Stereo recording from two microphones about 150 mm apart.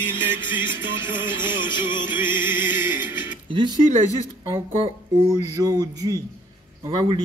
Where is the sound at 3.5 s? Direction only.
35° right (ahead or behind).